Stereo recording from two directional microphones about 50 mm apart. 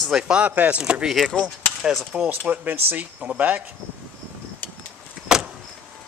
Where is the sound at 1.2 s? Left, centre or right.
Left.